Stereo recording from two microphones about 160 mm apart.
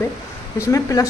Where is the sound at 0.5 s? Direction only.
20° left (ahead or behind).